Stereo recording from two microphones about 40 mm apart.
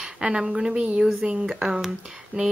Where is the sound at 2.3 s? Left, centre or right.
Right.